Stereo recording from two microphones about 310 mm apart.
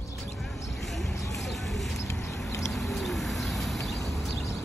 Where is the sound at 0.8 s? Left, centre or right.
Centre.